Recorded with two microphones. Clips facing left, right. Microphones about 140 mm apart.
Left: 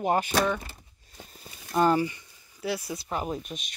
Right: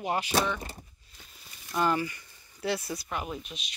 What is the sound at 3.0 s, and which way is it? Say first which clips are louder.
Speech: left 4 dB; 35° left (ahead or behind).